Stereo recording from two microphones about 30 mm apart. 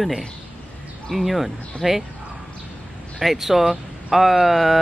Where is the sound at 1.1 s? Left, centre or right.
Centre.